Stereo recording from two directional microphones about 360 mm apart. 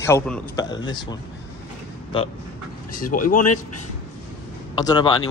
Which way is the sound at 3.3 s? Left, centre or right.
Left.